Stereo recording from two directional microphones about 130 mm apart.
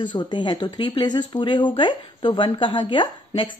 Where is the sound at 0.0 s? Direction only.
35° left (ahead or behind).